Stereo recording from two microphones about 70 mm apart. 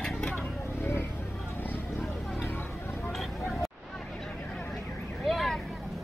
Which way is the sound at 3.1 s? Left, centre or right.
Centre.